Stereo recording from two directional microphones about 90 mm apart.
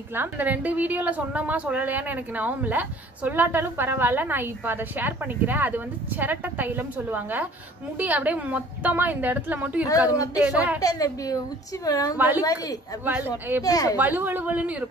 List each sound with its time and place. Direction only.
0.1 s a woman's voice: 20° right (ahead or behind)
9.8 s speech: 40° left (ahead or behind)
10.4 s a woman's voice: 15° right (ahead or behind)
10.8 s speech: 40° left (ahead or behind)
12.2 s a woman's voice: 20° right (ahead or behind)
13.6 s a woman's voice: 45° left (ahead or behind)
13.9 s a woman's voice: 20° right (ahead or behind)